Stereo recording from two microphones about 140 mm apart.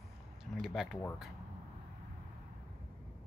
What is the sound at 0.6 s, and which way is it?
Speech, centre (ahead or behind).